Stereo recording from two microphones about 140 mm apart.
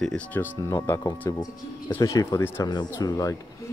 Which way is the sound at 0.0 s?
10° left (ahead or behind).